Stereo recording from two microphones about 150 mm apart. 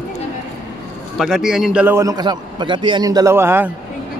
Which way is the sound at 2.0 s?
25° right (ahead or behind).